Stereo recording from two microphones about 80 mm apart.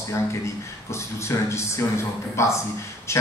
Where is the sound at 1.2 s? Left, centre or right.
Left.